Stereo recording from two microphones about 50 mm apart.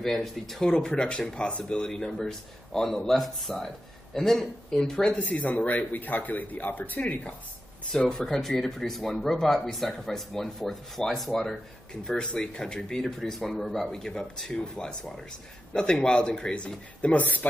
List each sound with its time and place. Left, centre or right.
0.0 s speech: centre
0.7 s a man's voice: centre
5.2 s speech: left
8.1 s a man's voice: centre; by 17.5 s left